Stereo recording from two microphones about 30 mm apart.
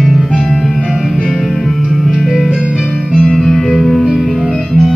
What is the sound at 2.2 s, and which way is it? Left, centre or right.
Music, centre.